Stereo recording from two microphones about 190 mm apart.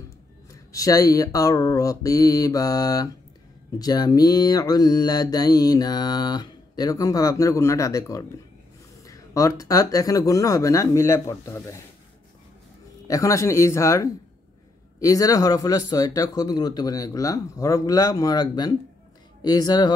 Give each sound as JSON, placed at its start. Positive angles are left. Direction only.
{"t": 0.5, "sound": "mantra", "side_deg": 20}
{"t": 9.0, "sound": "speech", "side_deg": 15}
{"t": 13.1, "sound": "speech", "side_deg": 15}
{"t": 15.0, "sound": "mantra", "side_deg": 20}